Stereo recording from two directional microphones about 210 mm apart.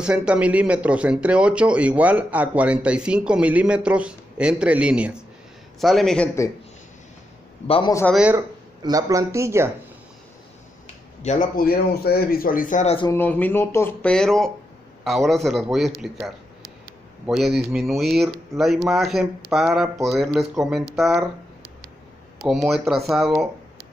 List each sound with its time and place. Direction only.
0.0 s speech: 5° right (ahead or behind)
7.6 s a man's voice: 25° left (ahead or behind)
8.1 s speech: 5° right (ahead or behind)
11.2 s speech: 40° left (ahead or behind)
12.9 s a man's voice: 20° left (ahead or behind)
13.2 s speech: 10° left (ahead or behind)
17.6 s speech: centre (ahead or behind)
22.4 s speech: centre (ahead or behind)